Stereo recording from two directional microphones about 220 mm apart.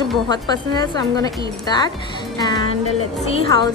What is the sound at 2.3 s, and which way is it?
Music, 20° left (ahead or behind).